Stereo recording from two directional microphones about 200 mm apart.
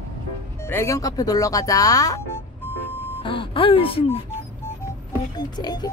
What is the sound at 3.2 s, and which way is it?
Speech, 25° left (ahead or behind).